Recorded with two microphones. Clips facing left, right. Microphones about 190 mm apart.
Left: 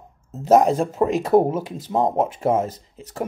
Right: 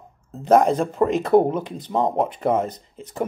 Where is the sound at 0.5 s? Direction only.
Centre (ahead or behind).